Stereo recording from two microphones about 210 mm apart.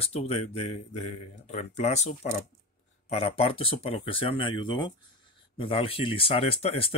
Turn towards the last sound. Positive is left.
turn(degrees=30)  # may be behind; listen again after turning